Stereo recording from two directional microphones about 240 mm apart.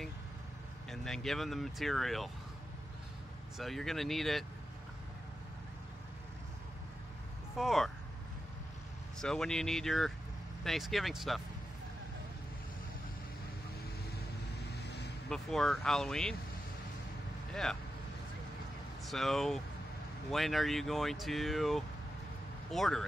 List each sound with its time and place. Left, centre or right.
0.8 s speech: centre
3.5 s speech: centre
7.5 s speech: centre
9.2 s speech: centre
14.7 s vehicle: left
15.2 s speech: centre
19.0 s speech: centre